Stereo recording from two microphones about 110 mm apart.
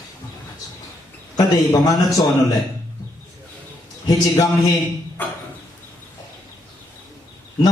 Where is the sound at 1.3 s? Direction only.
35° left (ahead or behind).